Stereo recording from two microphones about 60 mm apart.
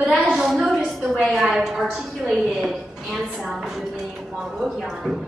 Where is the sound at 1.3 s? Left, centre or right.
Centre.